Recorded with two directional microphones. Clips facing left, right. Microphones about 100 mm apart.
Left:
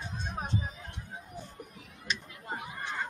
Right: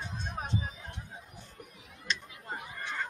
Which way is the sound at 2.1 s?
5° left (ahead or behind).